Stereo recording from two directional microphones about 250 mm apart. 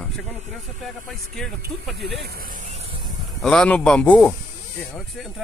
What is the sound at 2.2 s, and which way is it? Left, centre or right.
Speech, right.